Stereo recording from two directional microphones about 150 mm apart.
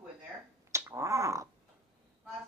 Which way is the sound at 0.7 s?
20° right (ahead or behind).